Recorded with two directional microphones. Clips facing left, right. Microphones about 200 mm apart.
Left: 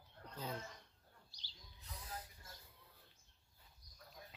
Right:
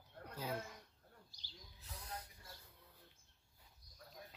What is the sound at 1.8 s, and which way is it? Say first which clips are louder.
Hiss: even; centre (ahead or behind).